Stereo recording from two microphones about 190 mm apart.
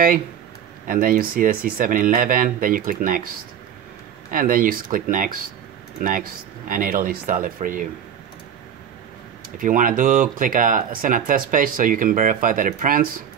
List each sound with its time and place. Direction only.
0.8 s speech: 50° right (ahead or behind)
4.3 s speech: 45° right (ahead or behind)
9.6 s speech: 45° right (ahead or behind)